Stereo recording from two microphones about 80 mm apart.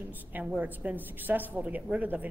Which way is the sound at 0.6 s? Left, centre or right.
Right.